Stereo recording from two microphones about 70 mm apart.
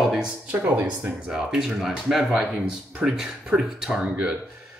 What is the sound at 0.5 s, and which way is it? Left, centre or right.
Speech, right.